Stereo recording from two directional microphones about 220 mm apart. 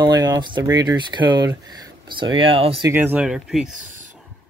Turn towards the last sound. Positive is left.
turn(degrees=-5)  # may be behind; listen again after turning